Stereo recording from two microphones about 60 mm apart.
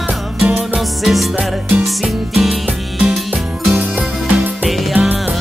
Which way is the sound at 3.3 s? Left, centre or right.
Right.